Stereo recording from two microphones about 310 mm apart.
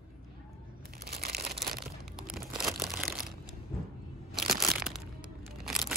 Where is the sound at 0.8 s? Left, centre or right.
Right.